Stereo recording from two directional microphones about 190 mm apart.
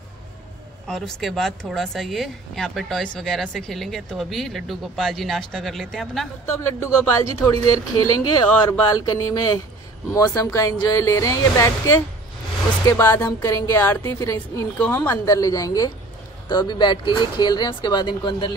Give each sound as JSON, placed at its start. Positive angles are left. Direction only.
{"t": 0.8, "sound": "speech", "side_deg": 0}
{"t": 6.4, "sound": "speech", "side_deg": 15}